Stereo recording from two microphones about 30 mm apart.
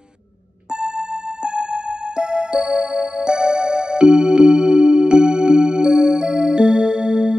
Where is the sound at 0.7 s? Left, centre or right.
Right.